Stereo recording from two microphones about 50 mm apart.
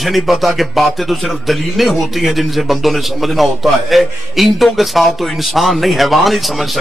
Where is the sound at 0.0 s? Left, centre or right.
Centre.